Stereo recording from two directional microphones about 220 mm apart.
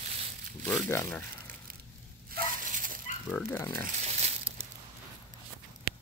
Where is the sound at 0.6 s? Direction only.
5° left (ahead or behind).